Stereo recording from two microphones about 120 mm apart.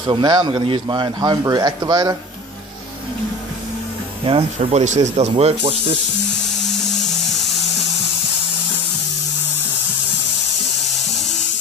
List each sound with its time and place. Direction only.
0.0 s a man's voice: 35° right (ahead or behind)
4.2 s speech: 50° right (ahead or behind)
4.6 s speech: 70° right (ahead or behind)
5.4 s speech: 55° right (ahead or behind)
6.7 s music: centre (ahead or behind)